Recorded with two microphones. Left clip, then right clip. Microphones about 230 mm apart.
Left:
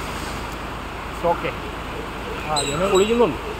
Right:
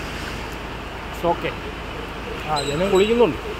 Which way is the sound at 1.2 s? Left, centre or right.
Centre.